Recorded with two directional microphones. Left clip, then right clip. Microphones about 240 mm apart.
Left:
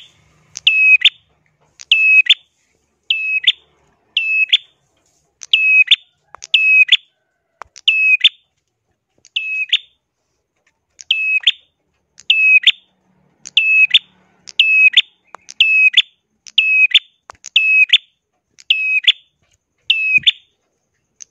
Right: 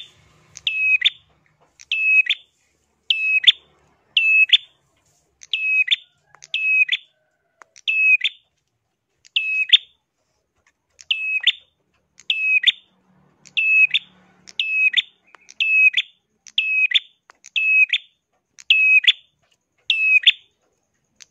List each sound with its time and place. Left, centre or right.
0.5 s smoke detector: left
3.1 s smoke detector: centre
5.7 s a sound: left
6.4 s smoke detector: left
7.6 s chirp tone: left
9.2 s bird: centre
11.0 s a sound: centre
13.4 s bird: left
13.7 s smoke detector: left
17.3 s a sound: left
18.6 s smoke detector: centre
19.9 s a sound: centre
21.2 s scissors: centre